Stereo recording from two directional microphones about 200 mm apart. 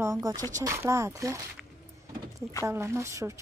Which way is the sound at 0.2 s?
20° right (ahead or behind).